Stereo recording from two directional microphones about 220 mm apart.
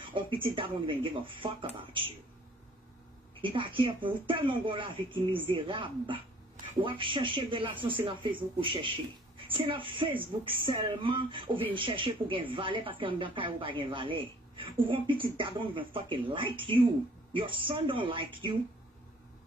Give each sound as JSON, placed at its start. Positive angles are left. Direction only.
{"t": 0.0, "sound": "speech", "side_deg": -20}
{"t": 3.3, "sound": "speech", "side_deg": -25}